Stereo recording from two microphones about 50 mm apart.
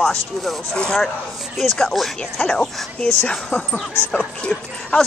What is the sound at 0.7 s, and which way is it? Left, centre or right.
Speech, centre.